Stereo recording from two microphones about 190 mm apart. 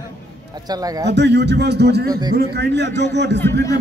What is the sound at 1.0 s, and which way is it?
A man's voice, 65° right (ahead or behind).